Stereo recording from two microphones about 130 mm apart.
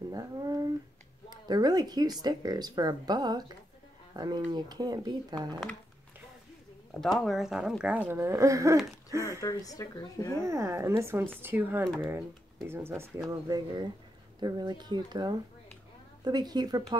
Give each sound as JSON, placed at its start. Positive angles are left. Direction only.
{"t": 0.1, "sound": "a sound", "side_deg": -30}
{"t": 1.3, "sound": "speech", "side_deg": -30}
{"t": 6.9, "sound": "speech", "side_deg": 5}
{"t": 9.4, "sound": "speech", "side_deg": 25}
{"t": 10.4, "sound": "speech", "side_deg": -20}